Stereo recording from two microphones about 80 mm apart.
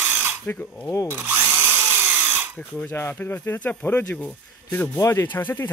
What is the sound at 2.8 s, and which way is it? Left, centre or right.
Speech, left.